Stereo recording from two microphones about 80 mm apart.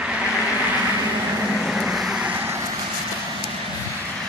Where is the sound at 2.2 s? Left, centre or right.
Right.